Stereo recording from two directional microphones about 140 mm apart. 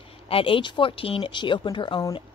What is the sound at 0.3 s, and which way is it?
A woman's voice, 40° left (ahead or behind).